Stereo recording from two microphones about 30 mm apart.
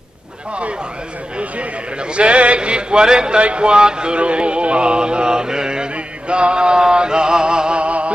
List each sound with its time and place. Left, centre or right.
2.0 s a man's voice: right
3.3 s a man's voice: right
4.2 s music: right
7.8 s music: right